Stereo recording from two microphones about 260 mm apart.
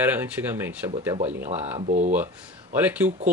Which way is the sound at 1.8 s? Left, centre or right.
Right.